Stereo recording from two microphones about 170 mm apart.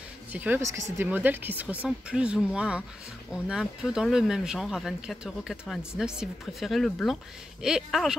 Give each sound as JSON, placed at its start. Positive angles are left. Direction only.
{"t": 0.3, "sound": "speech", "side_deg": -10}